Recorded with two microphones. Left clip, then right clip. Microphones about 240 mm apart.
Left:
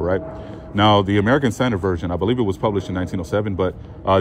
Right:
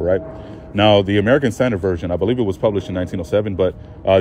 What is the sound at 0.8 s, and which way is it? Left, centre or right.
Speech, left.